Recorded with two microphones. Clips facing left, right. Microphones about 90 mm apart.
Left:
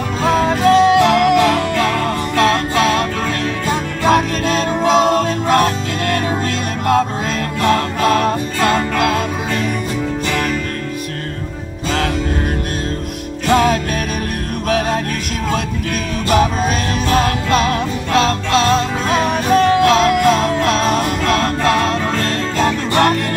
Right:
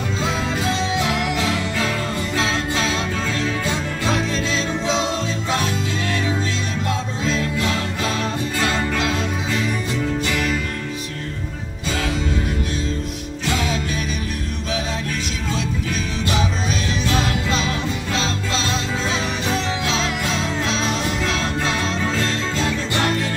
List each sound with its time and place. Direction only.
0.2 s music: 55° left (ahead or behind)
13.5 s music: 55° left (ahead or behind)
17.1 s music: 55° left (ahead or behind)